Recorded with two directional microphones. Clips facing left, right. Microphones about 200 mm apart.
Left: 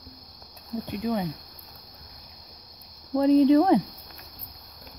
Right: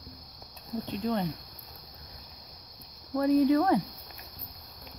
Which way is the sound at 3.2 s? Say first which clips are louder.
Left 5 dB; 25° left (ahead or behind).